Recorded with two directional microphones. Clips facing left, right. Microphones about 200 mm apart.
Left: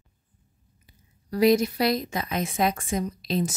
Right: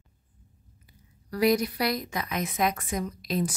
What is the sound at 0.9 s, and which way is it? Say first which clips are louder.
A woman's voice: left 4 dB; 25° left (ahead or behind).